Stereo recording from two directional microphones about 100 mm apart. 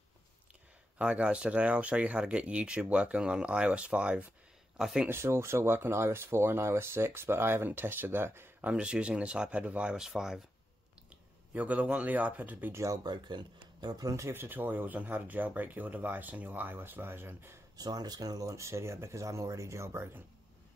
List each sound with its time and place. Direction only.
0.9 s speech: 10° right (ahead or behind)
5.0 s speech: 25° right (ahead or behind); by 10.4 s 5° right (ahead or behind)
11.1 s speech: 15° right (ahead or behind)
12.8 s speech: 40° right (ahead or behind); by 17.6 s 20° right (ahead or behind)
17.7 s speech: 40° right (ahead or behind)